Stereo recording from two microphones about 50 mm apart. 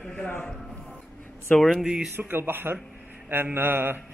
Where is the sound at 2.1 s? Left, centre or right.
Right.